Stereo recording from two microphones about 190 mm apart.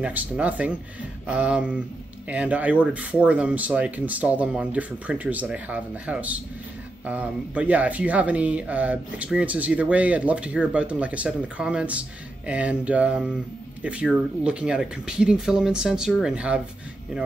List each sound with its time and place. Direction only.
0.0 s speech: 10° right (ahead or behind)